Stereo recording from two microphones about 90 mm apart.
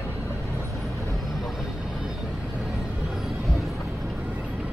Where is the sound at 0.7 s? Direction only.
Centre (ahead or behind).